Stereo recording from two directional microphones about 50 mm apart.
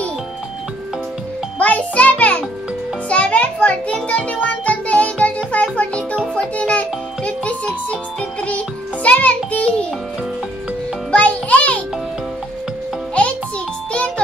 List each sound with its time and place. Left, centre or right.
1.6 s music: left
11.1 s music: left